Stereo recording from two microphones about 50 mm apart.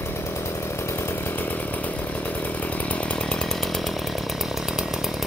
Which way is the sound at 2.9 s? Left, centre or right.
Left.